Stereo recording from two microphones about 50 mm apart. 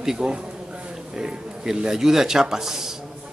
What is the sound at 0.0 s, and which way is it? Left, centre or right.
Speech, centre.